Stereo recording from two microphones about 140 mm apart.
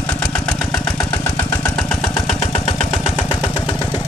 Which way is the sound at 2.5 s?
50° left (ahead or behind).